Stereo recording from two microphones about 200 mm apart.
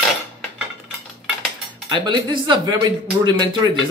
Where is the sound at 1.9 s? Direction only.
25° right (ahead or behind).